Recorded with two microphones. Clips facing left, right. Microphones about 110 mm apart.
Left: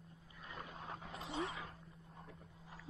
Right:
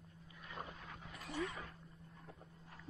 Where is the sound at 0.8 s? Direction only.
30° left (ahead or behind).